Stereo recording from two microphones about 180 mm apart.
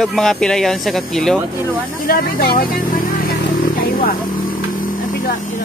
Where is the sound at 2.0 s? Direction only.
55° left (ahead or behind).